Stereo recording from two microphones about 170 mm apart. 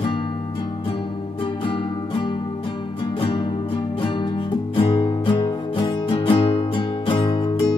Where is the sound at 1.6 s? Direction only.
30° left (ahead or behind).